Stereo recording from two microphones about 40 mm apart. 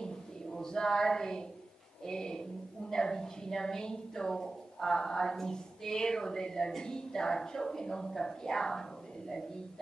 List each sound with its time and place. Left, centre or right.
0.6 s a woman's voice: centre